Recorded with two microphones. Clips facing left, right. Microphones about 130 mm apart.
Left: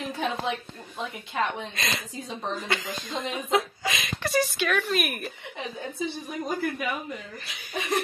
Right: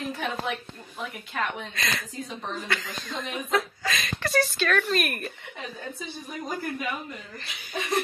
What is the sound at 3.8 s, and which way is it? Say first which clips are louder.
Speech: even; 15° left (ahead or behind).